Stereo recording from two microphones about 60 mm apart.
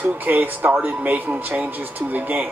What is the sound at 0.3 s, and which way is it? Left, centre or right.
Speech, right.